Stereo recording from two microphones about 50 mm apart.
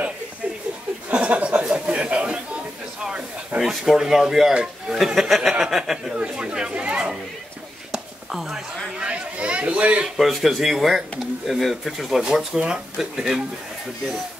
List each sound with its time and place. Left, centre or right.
1.1 s speech: right
3.6 s speech: centre
6.1 s a man's voice: centre
7.9 s a sound: centre
9.0 s a man's voice: right
10.1 s speech: centre
12.2 s speech: centre